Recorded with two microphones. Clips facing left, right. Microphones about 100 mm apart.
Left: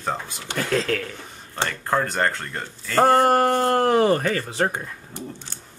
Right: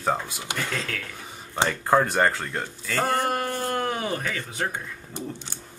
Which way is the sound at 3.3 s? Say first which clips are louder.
Left 9 dB; 50° left (ahead or behind).